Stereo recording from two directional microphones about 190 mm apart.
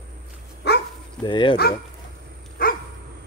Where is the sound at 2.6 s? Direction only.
50° left (ahead or behind).